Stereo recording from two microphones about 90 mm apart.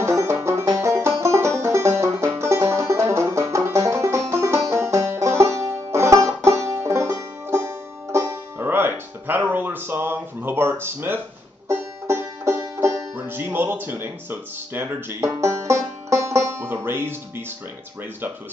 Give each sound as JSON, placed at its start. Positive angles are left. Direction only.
{"t": 0.0, "sound": "music", "side_deg": -30}